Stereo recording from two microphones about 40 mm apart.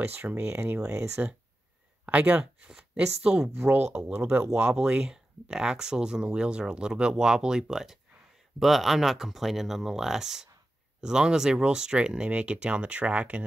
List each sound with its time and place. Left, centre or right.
0.0 s speech: right
0.5 s speech: right
1.2 s speech: right
2.0 s speech: right
3.4 s speech: right
3.7 s speech: right
4.7 s speech: right
5.0 s speech: centre; by 13.4 s right